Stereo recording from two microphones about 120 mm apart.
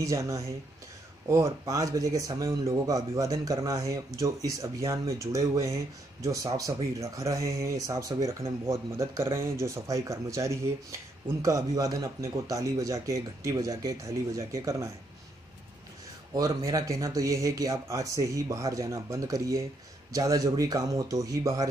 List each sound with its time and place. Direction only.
0.0 s speech: 25° right (ahead or behind)
16.3 s speech: 30° right (ahead or behind)